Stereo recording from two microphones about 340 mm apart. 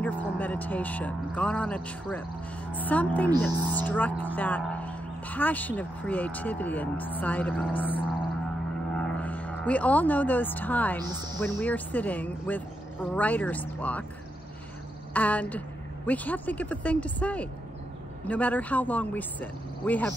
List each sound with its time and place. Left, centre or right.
0.0 s speech: centre
15.1 s speech: centre